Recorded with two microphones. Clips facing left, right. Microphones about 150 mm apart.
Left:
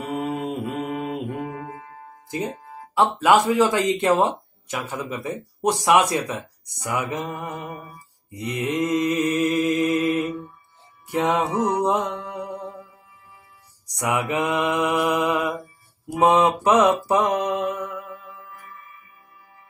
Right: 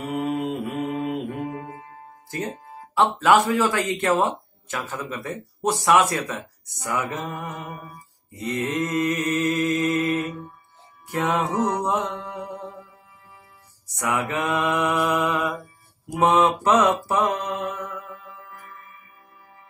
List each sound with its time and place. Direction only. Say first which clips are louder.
0.3 s music: right 1 dB; 15° left (ahead or behind)
2.3 s speech: left 2 dB; 10° left (ahead or behind)
11.1 s music: left 2 dB; 10° left (ahead or behind)
13.9 s speech: left 2 dB; 15° left (ahead or behind)
14.8 s mantra: left 1 dB; 10° left (ahead or behind)
16.2 s speech: left 1 dB; 15° left (ahead or behind)
17.1 s mantra: left 3 dB; 15° left (ahead or behind)
17.6 s music: left 3 dB; 10° left (ahead or behind)
18.5 s music: even; 55° right (ahead or behind)